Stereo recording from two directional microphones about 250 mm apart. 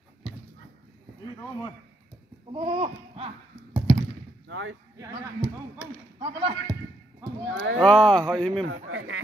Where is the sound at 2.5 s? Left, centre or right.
Right.